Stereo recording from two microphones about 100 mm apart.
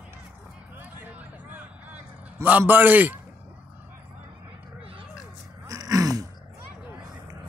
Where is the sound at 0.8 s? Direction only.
15° right (ahead or behind).